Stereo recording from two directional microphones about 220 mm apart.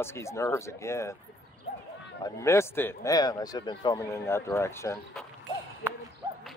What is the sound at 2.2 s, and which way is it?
A man's voice, 15° left (ahead or behind).